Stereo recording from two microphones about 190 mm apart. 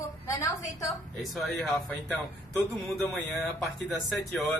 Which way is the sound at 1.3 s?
Centre (ahead or behind).